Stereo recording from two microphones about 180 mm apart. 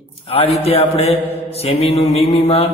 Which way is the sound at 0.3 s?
35° left (ahead or behind).